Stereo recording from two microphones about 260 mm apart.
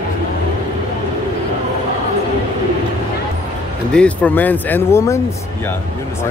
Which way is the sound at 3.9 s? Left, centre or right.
Centre.